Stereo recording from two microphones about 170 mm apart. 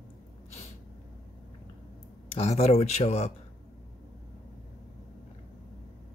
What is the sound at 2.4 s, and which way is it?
Speech, 40° left (ahead or behind).